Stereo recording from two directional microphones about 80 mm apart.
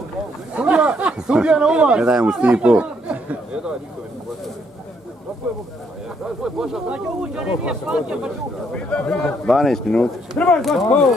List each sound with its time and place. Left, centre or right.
0.6 s speech: centre
6.4 s speech: centre
8.7 s speech: centre
9.5 s a man's voice: centre